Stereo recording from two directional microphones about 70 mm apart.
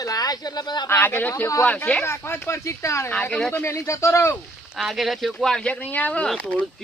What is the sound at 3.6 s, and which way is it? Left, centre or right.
Speech, left.